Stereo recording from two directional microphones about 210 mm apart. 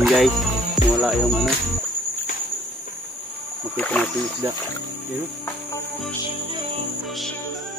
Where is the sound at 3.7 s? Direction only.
5° left (ahead or behind).